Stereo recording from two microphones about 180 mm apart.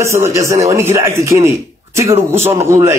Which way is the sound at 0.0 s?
15° right (ahead or behind).